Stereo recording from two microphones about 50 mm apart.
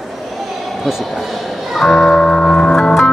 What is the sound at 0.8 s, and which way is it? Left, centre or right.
Speech, centre.